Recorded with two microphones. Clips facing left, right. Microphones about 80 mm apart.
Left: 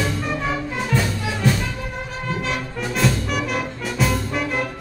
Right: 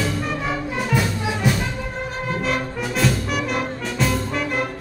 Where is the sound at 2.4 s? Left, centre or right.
Centre.